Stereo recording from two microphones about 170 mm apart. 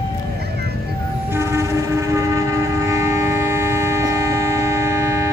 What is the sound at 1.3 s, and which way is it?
Train, 15° right (ahead or behind).